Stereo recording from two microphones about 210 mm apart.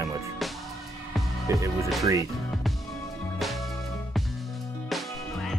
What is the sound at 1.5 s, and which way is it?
Speech, 15° right (ahead or behind).